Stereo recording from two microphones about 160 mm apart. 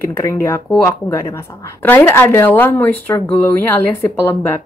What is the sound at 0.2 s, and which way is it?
Speech, 20° left (ahead or behind).